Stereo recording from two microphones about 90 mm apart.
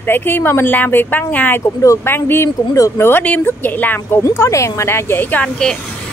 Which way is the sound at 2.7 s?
40° left (ahead or behind).